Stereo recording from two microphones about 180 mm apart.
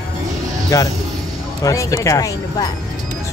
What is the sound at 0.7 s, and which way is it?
Speech, 15° left (ahead or behind).